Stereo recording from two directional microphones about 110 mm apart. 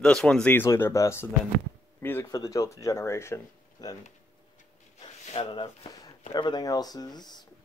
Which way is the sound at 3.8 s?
35° left (ahead or behind).